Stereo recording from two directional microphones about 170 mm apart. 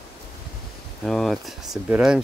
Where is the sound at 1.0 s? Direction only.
Centre (ahead or behind).